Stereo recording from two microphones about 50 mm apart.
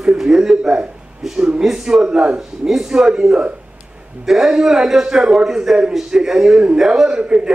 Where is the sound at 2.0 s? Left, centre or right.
Right.